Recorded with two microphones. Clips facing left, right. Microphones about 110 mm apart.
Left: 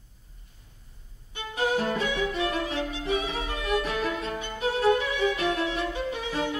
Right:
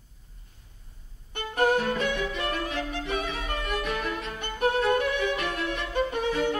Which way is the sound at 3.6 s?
35° left (ahead or behind).